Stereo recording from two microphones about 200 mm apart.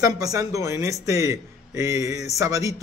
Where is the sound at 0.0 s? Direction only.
15° right (ahead or behind).